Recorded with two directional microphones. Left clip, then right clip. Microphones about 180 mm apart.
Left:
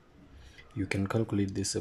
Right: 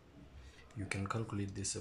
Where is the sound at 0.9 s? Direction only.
35° left (ahead or behind).